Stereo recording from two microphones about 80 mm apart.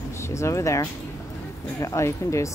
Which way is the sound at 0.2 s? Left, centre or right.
Left.